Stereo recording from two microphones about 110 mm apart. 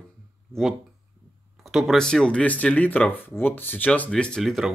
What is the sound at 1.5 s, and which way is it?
Speech, centre (ahead or behind).